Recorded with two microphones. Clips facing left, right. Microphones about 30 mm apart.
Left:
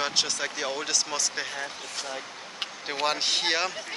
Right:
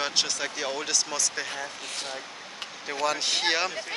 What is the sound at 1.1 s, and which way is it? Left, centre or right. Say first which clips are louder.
Speech: even; centre.